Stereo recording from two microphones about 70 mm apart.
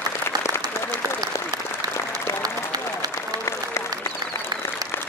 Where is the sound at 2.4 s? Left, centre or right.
Right.